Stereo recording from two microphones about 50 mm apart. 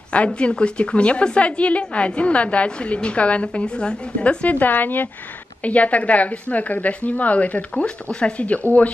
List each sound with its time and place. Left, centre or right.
0.1 s a woman's voice: left
4.6 s speech: left
5.6 s a woman's voice: left
7.7 s a woman's voice: centre